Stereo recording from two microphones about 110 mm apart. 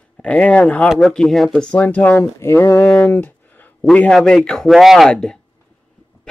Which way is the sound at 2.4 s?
25° left (ahead or behind).